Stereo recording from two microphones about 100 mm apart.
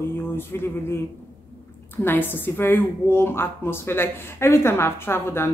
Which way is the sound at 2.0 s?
20° left (ahead or behind).